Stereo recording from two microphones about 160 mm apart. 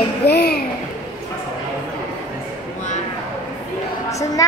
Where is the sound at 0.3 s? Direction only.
90° left.